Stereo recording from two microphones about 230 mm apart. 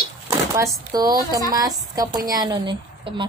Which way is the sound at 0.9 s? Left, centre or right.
Centre.